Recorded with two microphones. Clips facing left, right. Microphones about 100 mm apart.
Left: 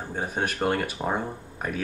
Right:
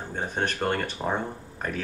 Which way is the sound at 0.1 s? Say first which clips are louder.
Even; 10° left (ahead or behind).